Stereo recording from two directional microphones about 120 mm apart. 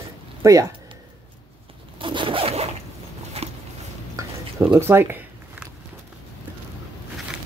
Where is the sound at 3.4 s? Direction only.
55° right (ahead or behind).